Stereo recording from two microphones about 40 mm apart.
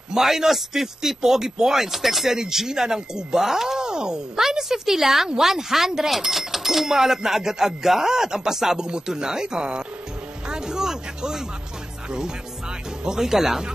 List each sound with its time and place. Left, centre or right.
0.1 s speech: centre
10.5 s a sound: centre
13.0 s speech: centre